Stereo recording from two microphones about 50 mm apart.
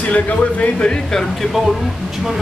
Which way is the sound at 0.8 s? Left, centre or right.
Centre.